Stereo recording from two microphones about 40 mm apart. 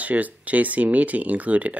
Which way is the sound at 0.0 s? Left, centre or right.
Right.